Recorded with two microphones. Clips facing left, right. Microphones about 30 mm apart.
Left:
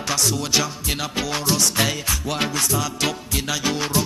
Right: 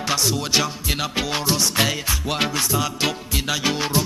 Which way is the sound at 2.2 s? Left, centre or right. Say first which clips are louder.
Right 2 dB; right.